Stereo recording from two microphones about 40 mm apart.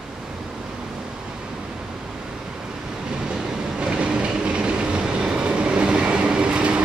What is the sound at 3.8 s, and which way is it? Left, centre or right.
Train, right.